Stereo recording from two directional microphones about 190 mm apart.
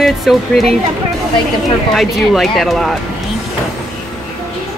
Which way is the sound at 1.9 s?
Centre (ahead or behind).